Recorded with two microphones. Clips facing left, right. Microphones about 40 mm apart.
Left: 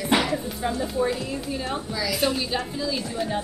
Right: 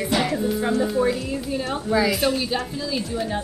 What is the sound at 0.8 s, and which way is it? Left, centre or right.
A woman's voice, centre.